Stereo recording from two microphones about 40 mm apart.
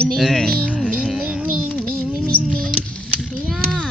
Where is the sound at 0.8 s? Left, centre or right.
Centre.